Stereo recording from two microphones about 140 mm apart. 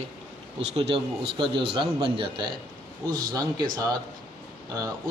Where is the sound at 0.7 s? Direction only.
45° right (ahead or behind).